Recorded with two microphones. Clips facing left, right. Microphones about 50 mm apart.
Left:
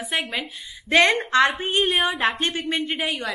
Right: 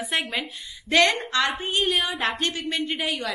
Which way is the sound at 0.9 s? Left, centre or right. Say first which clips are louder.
Left 3 dB; left.